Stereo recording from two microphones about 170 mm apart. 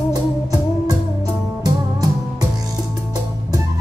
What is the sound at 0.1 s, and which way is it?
Music, 20° right (ahead or behind).